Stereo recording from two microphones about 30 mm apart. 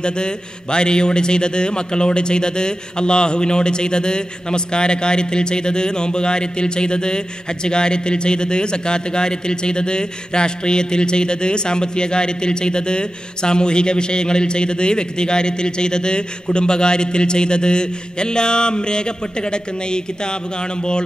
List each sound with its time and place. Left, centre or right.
0.0 s a man's voice: left